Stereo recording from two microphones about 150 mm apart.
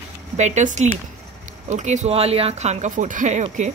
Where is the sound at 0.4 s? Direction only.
50° right (ahead or behind).